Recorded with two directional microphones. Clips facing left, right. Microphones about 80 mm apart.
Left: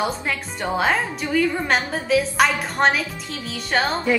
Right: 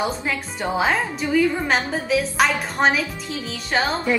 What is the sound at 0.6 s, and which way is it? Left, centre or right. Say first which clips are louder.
A woman's voice: even; centre.